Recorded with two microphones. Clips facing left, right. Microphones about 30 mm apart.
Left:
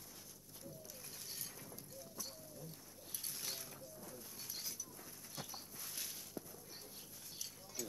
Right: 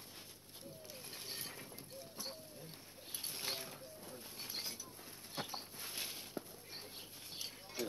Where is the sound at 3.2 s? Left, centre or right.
Right.